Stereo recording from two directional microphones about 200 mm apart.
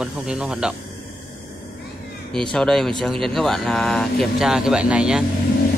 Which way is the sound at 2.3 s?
5° left (ahead or behind).